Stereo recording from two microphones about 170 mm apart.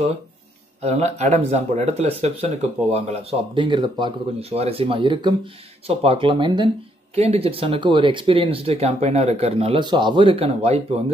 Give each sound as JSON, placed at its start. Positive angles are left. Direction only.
{"t": 0.7, "sound": "speech", "side_deg": -40}